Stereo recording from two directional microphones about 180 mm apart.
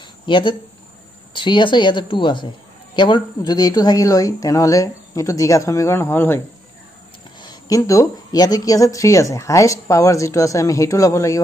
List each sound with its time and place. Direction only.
0.0 s cricket: 25° left (ahead or behind)
1.3 s speech: 25° left (ahead or behind)
7.3 s a woman's voice: 20° left (ahead or behind)